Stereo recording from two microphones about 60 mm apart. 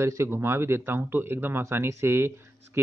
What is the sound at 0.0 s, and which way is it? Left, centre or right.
Speech, right.